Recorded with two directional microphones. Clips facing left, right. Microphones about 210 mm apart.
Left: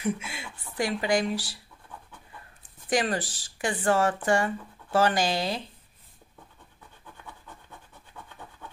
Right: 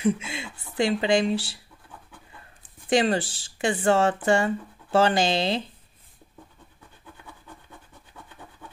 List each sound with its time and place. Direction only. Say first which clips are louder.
0.0 s speech: right 5 dB; 25° right (ahead or behind)
2.9 s speech: right 5 dB; 25° right (ahead or behind)